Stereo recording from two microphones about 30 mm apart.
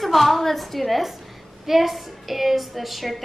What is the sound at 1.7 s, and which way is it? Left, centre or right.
A woman's voice, centre.